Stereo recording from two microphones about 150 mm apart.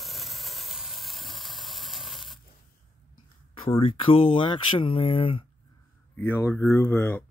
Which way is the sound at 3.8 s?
40° left (ahead or behind).